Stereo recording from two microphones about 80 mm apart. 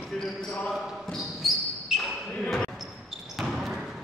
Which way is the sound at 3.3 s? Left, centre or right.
Centre.